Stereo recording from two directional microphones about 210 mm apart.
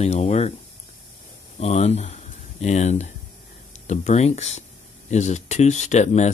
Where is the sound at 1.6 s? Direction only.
30° left (ahead or behind).